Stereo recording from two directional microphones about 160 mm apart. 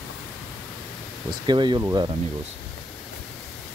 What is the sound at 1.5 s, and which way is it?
Speech, 30° right (ahead or behind).